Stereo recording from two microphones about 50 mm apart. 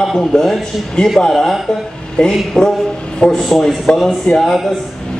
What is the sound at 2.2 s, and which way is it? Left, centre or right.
Speech, centre.